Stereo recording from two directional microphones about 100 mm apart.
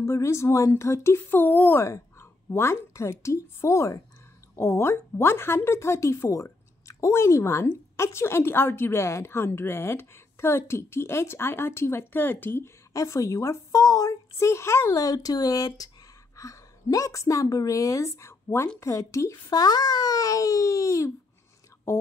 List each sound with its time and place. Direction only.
0.0 s speech: 30° left (ahead or behind)
12.9 s a woman's voice: 35° left (ahead or behind)